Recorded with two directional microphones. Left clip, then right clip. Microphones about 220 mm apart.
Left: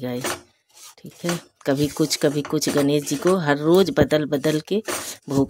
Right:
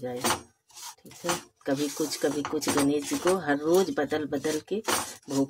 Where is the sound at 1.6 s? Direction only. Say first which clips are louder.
Left 11 dB; 40° left (ahead or behind).